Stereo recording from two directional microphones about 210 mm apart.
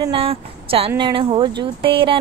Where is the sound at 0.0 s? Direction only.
25° right (ahead or behind).